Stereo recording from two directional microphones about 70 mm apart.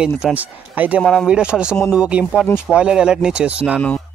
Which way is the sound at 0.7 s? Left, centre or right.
Right.